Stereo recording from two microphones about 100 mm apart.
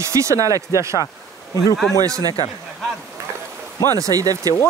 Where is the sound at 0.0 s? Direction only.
30° right (ahead or behind).